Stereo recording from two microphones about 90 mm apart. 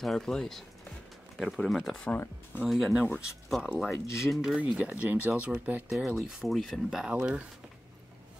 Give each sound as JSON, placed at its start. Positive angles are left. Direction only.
{"t": 0.0, "sound": "speech", "side_deg": 5}
{"t": 2.0, "sound": "speech", "side_deg": 20}
{"t": 2.6, "sound": "speech", "side_deg": -5}